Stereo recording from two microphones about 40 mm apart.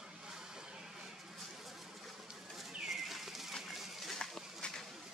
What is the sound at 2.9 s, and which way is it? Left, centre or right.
Bird, centre.